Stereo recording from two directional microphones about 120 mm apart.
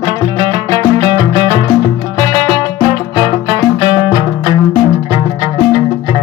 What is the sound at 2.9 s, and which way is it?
Music, 35° right (ahead or behind).